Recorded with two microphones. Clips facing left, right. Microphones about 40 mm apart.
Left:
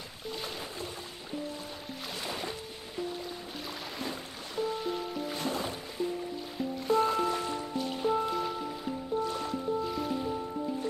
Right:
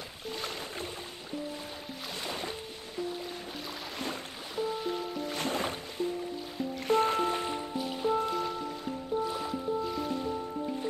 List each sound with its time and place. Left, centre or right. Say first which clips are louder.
2.2 s music: even; centre
4.6 s music: even; centre
5.3 s music: right 3 dB; right
7.2 s music: even; right
7.7 s music: even; centre